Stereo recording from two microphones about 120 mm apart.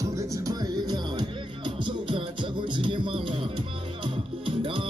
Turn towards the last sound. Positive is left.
turn(degrees=-45)  # may be behind; listen again after turning